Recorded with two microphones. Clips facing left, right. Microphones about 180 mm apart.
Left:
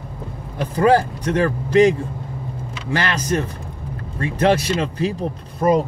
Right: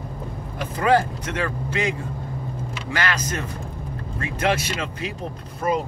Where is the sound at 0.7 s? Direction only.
35° left (ahead or behind).